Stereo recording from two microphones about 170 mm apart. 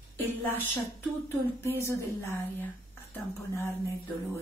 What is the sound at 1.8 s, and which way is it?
A woman's voice, 15° left (ahead or behind).